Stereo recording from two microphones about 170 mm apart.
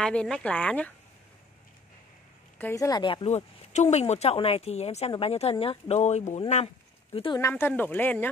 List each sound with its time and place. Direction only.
0.0 s speech: 5° left (ahead or behind)
2.6 s a woman's voice: 20° left (ahead or behind); by 6.4 s 40° left (ahead or behind)
7.3 s speech: 15° left (ahead or behind)